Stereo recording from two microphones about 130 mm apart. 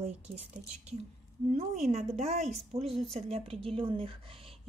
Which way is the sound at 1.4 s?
60° right (ahead or behind).